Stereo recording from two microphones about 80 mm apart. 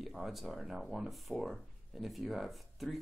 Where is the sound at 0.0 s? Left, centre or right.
Centre.